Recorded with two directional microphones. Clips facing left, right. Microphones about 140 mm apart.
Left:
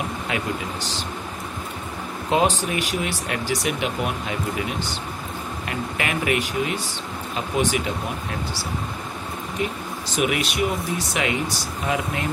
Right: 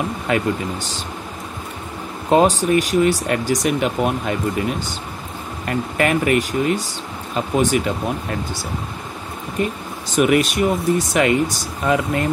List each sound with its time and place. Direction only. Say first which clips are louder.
2.3 s speech: right 7 dB; 45° right (ahead or behind)
10.1 s speech: right 7 dB; 45° right (ahead or behind)